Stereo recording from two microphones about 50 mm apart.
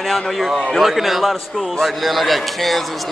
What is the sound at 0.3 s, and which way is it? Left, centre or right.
A man's voice, centre.